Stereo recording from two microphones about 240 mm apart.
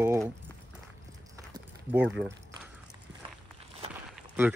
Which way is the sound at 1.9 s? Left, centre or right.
Centre.